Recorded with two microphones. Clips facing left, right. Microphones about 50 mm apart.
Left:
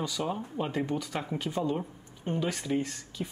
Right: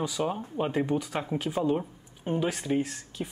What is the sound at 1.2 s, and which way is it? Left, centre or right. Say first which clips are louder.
Speech: right 3 dB; centre.